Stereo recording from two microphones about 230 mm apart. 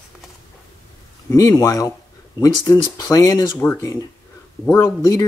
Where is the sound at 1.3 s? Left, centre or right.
Centre.